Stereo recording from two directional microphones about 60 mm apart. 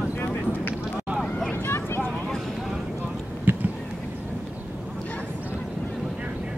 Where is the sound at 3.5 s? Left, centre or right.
Right.